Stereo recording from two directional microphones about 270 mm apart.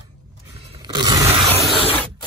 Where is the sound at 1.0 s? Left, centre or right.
Centre.